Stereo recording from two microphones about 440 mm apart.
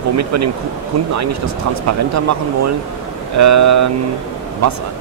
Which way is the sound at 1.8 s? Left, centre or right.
Right.